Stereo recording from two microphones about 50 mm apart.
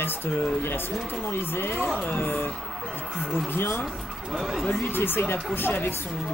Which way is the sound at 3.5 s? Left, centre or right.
Left.